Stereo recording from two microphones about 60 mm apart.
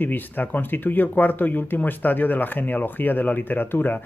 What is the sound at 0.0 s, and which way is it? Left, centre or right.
Speech, left.